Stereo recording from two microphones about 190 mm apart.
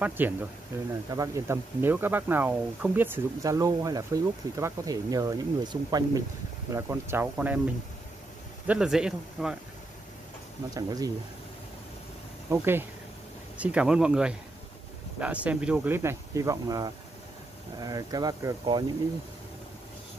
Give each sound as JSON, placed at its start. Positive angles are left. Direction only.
{"t": 0.0, "sound": "speech", "side_deg": -10}
{"t": 8.6, "sound": "speech", "side_deg": -5}
{"t": 10.7, "sound": "speech", "side_deg": -20}
{"t": 12.4, "sound": "speech", "side_deg": -10}